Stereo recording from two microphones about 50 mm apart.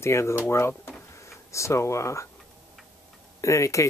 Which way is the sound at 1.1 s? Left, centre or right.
Left.